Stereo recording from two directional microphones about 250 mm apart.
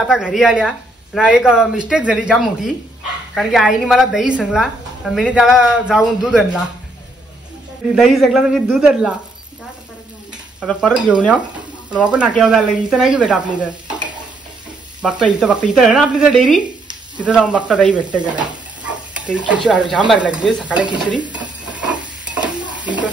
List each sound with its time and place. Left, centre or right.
0.0 s a woman's voice: centre
7.9 s a woman's voice: centre
10.6 s a woman's voice: centre
15.0 s a woman's voice: centre
22.3 s stir: centre